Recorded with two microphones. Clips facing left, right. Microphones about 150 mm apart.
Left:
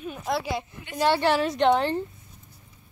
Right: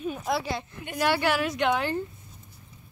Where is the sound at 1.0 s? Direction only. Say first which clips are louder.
Left 3 dB; 25° left (ahead or behind).